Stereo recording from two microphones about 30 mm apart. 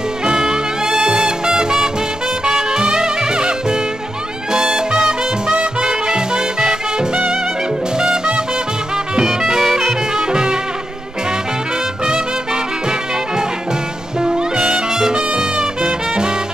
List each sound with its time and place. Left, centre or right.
0.2 s music: right
9.2 s music: centre
10.1 s music: right
12.0 s music: right